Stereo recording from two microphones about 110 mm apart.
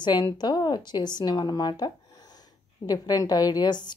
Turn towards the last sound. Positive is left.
turn(degrees=40)  # may be behind; listen again after turning